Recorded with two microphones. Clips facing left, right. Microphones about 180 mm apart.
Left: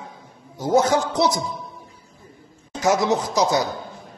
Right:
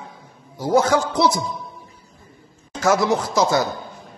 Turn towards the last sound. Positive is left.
turn(degrees=15)  # may be behind; listen again after turning